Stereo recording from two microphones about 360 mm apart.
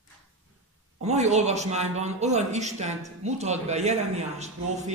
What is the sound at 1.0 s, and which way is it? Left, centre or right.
A man's voice, centre.